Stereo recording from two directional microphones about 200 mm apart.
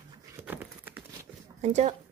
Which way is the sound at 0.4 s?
10° right (ahead or behind).